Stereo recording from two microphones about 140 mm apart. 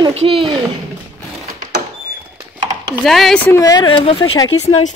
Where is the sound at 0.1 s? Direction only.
45° right (ahead or behind).